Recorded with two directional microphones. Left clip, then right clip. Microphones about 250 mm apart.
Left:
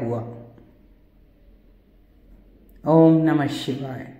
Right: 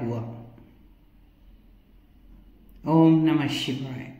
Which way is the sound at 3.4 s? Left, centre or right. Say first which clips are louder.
Left 2 dB; centre.